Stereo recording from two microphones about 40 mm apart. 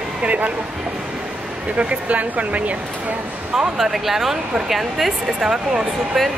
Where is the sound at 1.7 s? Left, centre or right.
Right.